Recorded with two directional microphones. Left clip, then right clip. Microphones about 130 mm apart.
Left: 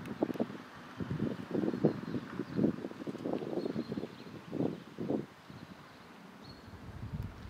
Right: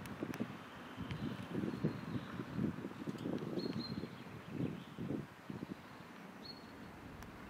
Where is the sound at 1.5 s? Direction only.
40° left (ahead or behind).